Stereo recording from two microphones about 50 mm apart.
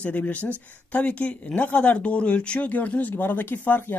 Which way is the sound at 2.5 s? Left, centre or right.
Left.